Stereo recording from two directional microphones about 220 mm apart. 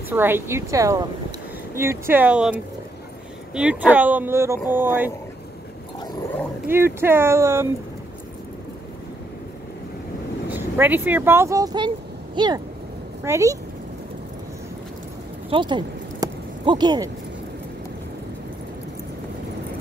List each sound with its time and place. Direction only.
0.1 s speech: 10° right (ahead or behind)
6.7 s speech: 10° right (ahead or behind)
10.5 s speech: 10° right (ahead or behind)
15.5 s a sound: 20° right (ahead or behind)